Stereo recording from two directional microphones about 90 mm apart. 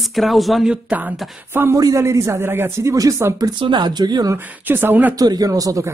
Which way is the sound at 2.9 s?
40° right (ahead or behind).